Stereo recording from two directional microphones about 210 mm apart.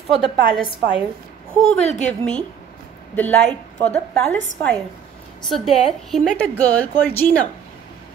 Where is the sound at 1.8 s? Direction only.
35° left (ahead or behind).